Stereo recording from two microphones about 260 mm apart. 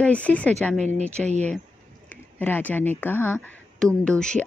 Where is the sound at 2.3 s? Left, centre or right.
Centre.